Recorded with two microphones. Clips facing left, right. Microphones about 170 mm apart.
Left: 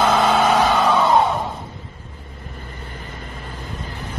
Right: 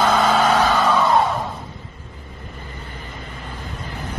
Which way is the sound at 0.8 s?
25° left (ahead or behind).